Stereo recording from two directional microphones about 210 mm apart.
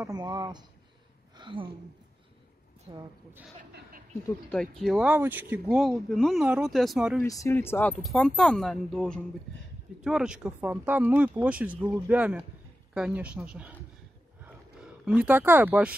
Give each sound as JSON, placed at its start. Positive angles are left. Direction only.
{"t": 0.0, "sound": "speech", "side_deg": -20}
{"t": 1.3, "sound": "a sound", "side_deg": -25}
{"t": 2.9, "sound": "speech", "side_deg": -20}
{"t": 4.5, "sound": "speech", "side_deg": 5}
{"t": 7.2, "sound": "speech", "side_deg": 10}
{"t": 14.8, "sound": "speech", "side_deg": -5}